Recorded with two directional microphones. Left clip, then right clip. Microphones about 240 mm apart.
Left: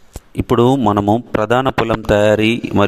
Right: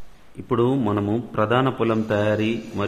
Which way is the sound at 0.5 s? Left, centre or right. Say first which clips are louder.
Left 8 dB; left.